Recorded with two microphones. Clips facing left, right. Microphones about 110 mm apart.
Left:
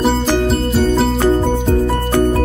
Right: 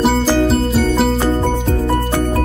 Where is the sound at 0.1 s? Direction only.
Centre (ahead or behind).